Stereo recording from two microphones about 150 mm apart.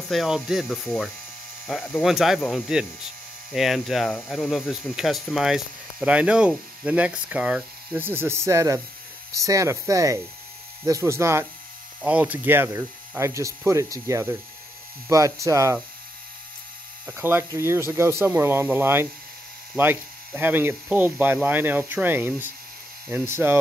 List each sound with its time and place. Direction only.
0.1 s speech: centre (ahead or behind); by 15.8 s 20° right (ahead or behind)
17.0 s speech: 15° right (ahead or behind)